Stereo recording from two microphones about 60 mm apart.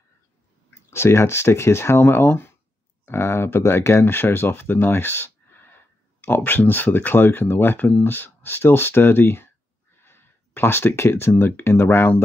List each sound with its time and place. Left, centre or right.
0.8 s speech: left